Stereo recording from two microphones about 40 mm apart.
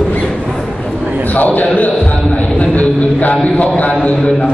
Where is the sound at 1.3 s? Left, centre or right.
Left.